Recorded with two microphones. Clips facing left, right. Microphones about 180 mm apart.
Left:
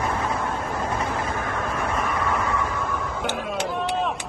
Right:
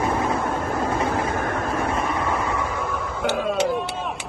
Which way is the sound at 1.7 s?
25° right (ahead or behind).